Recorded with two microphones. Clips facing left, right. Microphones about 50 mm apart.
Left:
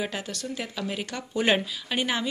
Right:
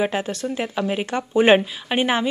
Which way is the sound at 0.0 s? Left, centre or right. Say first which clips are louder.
Right 9 dB; right.